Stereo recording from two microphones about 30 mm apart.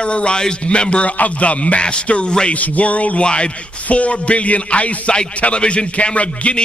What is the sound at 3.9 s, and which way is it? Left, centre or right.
A man's voice, left.